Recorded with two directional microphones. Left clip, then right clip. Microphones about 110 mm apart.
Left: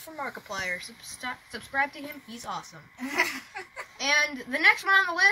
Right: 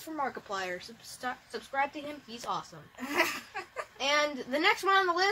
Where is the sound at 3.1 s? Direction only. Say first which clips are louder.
Left 2 dB; 35° right (ahead or behind).